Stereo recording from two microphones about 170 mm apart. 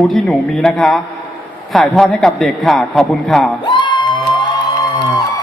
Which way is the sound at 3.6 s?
30° left (ahead or behind).